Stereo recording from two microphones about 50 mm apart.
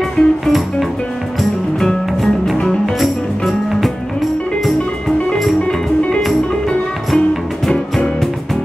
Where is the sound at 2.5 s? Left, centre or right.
Centre.